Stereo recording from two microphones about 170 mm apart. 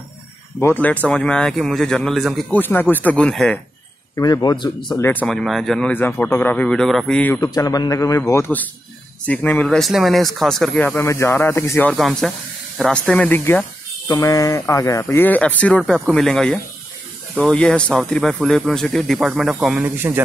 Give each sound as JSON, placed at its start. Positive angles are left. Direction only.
{"t": 0.6, "sound": "speech", "side_deg": 10}
{"t": 2.6, "sound": "speech", "side_deg": 10}
{"t": 4.1, "sound": "speech", "side_deg": 20}
{"t": 7.3, "sound": "a man's voice", "side_deg": 20}
{"t": 11.9, "sound": "speech", "side_deg": 0}